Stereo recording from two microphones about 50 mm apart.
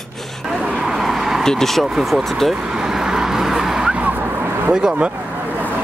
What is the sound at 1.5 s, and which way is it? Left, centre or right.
Speech, centre.